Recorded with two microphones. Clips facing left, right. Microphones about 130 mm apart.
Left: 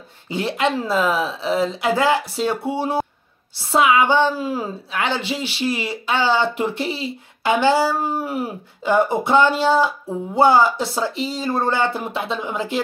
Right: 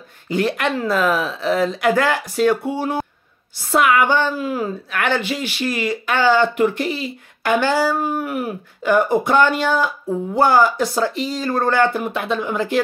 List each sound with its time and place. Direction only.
0.3 s speech: 20° left (ahead or behind)